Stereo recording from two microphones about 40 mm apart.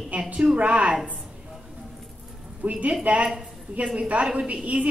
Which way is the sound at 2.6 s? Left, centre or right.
Right.